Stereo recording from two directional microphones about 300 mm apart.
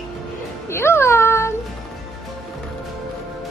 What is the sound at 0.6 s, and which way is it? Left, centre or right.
Music, centre.